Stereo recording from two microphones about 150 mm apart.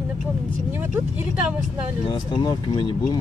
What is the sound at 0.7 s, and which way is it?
Speech, 15° right (ahead or behind).